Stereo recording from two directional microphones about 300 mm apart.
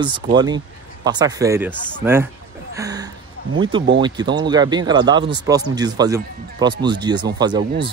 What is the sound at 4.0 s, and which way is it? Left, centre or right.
Speech, centre.